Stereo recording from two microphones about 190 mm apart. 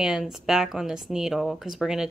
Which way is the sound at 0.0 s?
Centre (ahead or behind).